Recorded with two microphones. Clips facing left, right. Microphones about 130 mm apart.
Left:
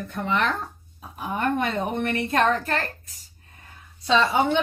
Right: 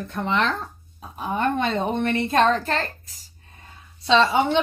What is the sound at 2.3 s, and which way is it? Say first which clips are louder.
Speech: right 2 dB; 75° right (ahead or behind).